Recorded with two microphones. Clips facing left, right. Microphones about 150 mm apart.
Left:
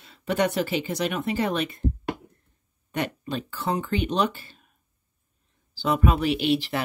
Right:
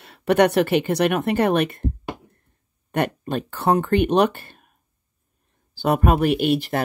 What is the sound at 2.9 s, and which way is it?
Speech, 55° right (ahead or behind).